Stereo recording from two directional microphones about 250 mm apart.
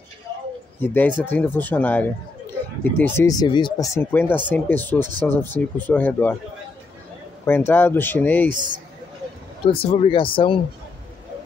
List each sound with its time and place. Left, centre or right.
0.7 s speech: centre
7.4 s speech: centre
8.5 s speech: centre
9.7 s speech: left